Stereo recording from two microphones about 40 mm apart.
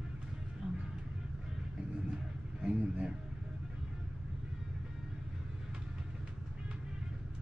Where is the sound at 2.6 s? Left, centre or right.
Right.